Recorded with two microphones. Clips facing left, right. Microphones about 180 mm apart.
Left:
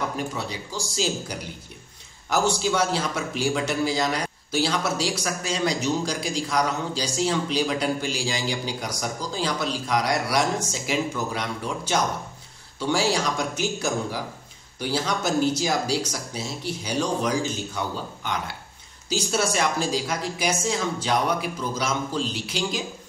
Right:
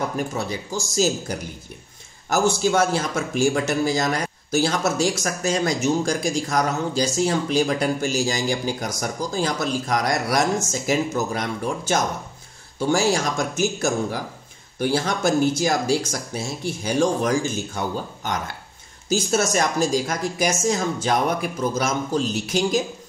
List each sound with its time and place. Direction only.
0.3 s speech: 45° right (ahead or behind)